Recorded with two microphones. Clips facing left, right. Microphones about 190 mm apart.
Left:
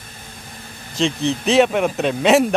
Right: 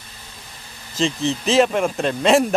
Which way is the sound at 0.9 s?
Centre (ahead or behind).